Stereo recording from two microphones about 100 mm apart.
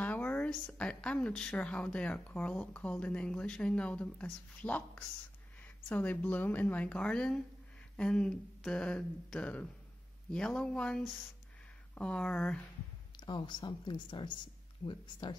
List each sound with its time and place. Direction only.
0.0 s speech: 15° left (ahead or behind)
13.2 s speech: 50° left (ahead or behind)